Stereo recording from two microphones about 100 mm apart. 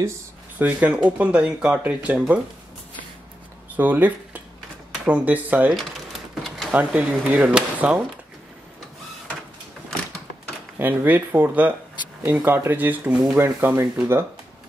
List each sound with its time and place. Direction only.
0.6 s speech: 15° right (ahead or behind)
3.7 s speech: 15° right (ahead or behind)
5.8 s typing: centre (ahead or behind)
6.7 s speech: 15° right (ahead or behind)
10.8 s speech: 20° right (ahead or behind)